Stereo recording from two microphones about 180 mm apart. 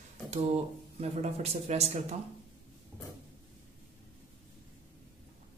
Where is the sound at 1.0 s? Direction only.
35° right (ahead or behind).